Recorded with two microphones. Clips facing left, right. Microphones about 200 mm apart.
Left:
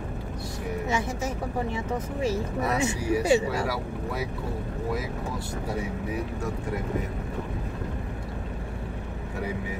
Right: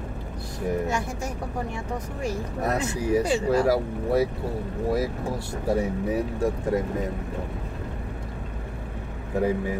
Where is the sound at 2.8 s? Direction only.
10° left (ahead or behind).